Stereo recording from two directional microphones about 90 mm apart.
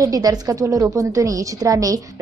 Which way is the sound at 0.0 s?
45° right (ahead or behind).